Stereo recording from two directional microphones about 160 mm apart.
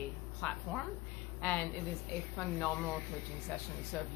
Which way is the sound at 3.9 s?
10° left (ahead or behind).